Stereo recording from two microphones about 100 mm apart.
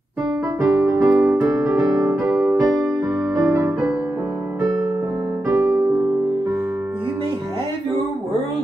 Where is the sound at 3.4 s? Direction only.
30° right (ahead or behind).